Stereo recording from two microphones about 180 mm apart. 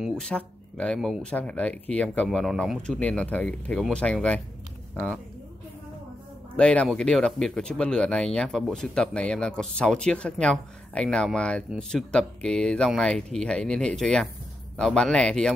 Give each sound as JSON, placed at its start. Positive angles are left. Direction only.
{"t": 0.0, "sound": "speech", "side_deg": 5}
{"t": 6.5, "sound": "speech", "side_deg": 5}